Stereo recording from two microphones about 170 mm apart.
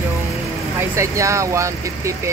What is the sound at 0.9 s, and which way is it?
Speech, 15° right (ahead or behind).